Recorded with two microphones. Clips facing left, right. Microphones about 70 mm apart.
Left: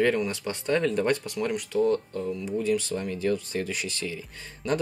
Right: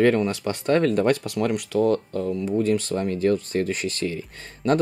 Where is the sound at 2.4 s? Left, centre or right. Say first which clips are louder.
Right 4 dB; right.